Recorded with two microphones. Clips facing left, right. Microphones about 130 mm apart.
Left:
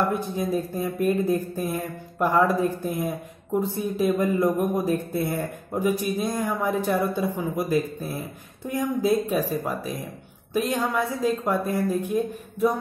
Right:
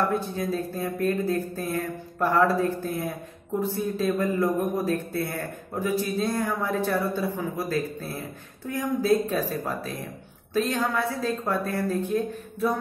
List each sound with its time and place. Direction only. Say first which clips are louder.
0.1 s a man's voice: left 2 dB; 15° left (ahead or behind)